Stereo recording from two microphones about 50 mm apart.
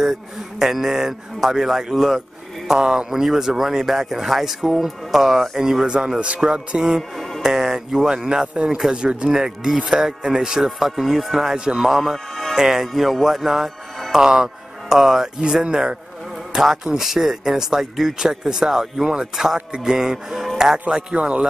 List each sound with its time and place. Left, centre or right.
0.6 s speech: centre
2.7 s speech: centre
6.2 s music: right
7.0 s music: centre
7.4 s music: centre
8.3 s speech: centre
8.9 s music: centre
9.3 s speech: centre
11.9 s speech: centre
12.5 s music: centre
14.1 s speech: centre
21.1 s music: right